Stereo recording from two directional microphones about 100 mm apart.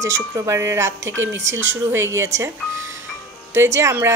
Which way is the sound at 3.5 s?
25° right (ahead or behind).